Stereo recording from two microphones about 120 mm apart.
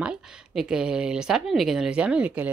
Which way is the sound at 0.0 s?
5° right (ahead or behind).